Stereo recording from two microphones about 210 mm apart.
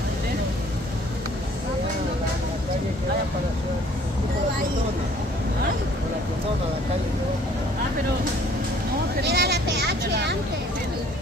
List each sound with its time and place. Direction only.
9.2 s speech: 50° right (ahead or behind)